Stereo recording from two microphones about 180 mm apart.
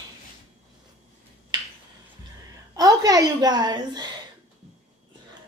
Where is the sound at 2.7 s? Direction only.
20° right (ahead or behind).